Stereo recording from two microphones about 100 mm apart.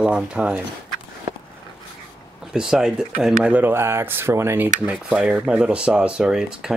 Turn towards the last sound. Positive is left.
turn(degrees=-5)  # may be behind; listen again after turning